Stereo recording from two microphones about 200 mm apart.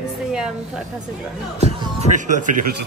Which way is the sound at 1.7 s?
35° right (ahead or behind).